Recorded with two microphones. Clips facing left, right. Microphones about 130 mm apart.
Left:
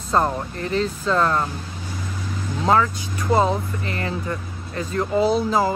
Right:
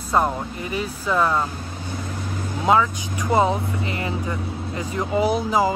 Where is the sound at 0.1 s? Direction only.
10° right (ahead or behind).